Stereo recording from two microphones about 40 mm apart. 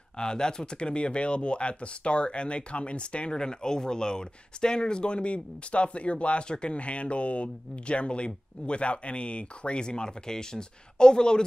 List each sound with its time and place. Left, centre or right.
0.2 s speech: centre